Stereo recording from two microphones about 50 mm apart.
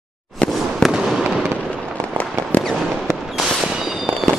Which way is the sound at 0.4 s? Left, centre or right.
Left.